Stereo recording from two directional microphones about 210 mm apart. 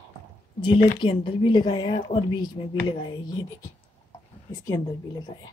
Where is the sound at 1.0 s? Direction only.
25° left (ahead or behind).